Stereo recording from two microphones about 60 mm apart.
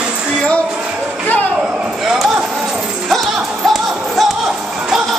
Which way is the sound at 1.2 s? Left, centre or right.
Left.